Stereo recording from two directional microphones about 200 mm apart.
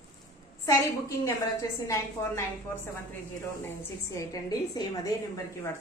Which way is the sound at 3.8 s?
15° left (ahead or behind).